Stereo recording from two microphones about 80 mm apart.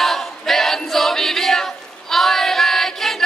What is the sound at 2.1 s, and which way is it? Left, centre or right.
Child singing, centre.